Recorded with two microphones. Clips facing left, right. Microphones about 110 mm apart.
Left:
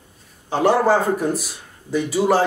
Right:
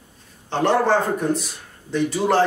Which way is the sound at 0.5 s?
5° left (ahead or behind).